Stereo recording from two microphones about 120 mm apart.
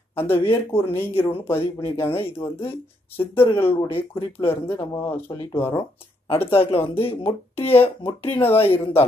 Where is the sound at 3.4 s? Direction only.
50° left (ahead or behind).